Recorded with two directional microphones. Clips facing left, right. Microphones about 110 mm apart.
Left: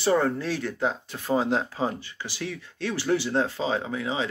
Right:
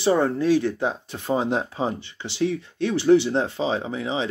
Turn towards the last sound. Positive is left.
turn(degrees=-25)  # may be behind; listen again after turning